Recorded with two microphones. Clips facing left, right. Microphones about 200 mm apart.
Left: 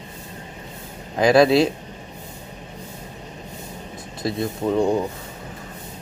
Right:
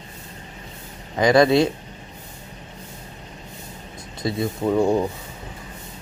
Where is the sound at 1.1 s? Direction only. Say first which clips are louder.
Left 1 dB; 5° left (ahead or behind).